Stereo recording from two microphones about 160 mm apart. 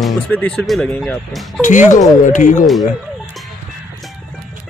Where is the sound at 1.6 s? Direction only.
55° left (ahead or behind).